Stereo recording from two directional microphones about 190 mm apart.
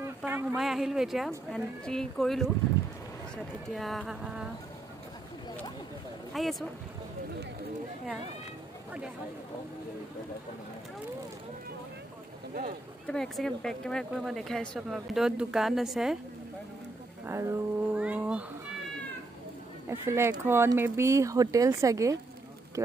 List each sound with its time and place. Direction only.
0.0 s a sound: 10° right (ahead or behind)
0.6 s speech: centre (ahead or behind)
3.7 s speech: centre (ahead or behind)
6.4 s speech: centre (ahead or behind)
13.0 s speech: 5° left (ahead or behind)
17.3 s speech: 15° right (ahead or behind)
19.9 s speech: 15° right (ahead or behind)